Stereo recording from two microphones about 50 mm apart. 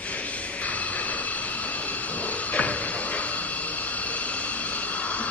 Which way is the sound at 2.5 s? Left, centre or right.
Left.